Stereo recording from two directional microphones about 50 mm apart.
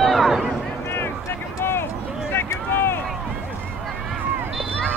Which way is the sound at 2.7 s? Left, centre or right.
Left.